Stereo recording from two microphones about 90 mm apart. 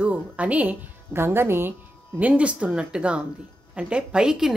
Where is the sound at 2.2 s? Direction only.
15° right (ahead or behind).